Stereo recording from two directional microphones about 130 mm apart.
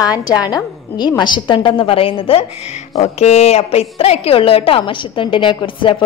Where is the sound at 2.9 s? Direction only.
55° left (ahead or behind).